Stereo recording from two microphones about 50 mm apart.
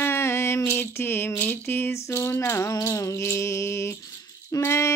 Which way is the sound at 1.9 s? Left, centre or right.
Left.